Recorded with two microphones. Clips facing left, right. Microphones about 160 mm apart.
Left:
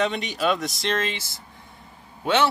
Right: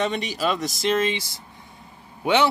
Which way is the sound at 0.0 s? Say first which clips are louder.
Even; centre (ahead or behind).